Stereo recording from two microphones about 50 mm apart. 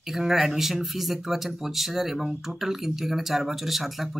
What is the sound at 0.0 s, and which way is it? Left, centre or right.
Speech, centre.